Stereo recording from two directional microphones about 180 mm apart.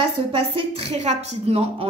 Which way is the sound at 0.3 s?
30° right (ahead or behind).